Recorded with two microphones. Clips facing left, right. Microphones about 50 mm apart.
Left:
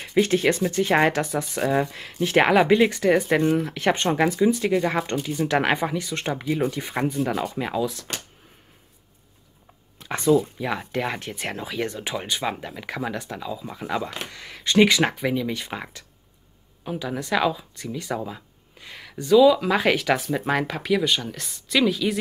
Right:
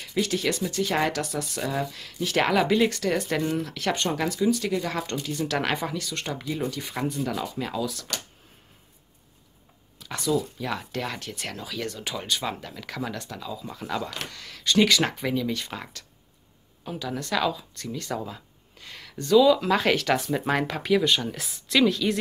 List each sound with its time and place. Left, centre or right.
0.0 s speech: left
9.9 s speech: left; by 22.1 s centre